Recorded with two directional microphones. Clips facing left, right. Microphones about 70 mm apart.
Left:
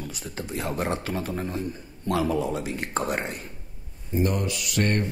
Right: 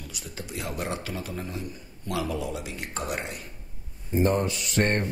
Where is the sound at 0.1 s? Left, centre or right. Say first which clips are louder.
Left 4 dB; left.